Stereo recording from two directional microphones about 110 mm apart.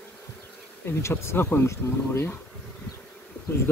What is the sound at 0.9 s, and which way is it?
Speech, 25° left (ahead or behind).